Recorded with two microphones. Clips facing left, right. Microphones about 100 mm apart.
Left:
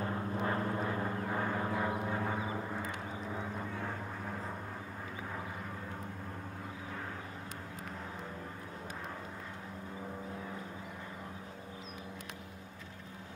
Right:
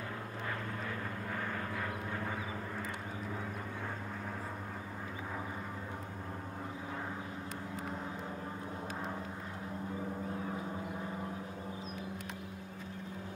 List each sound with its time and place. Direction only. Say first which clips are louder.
0.0 s vehicle: left 6 dB; 30° left (ahead or behind)